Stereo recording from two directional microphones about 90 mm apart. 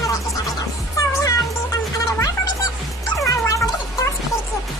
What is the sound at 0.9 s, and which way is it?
Music, 40° left (ahead or behind).